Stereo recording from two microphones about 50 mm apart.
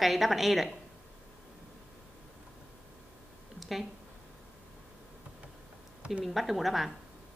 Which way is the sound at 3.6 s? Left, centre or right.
Centre.